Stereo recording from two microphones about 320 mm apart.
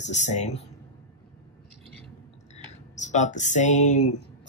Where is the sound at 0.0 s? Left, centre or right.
Left.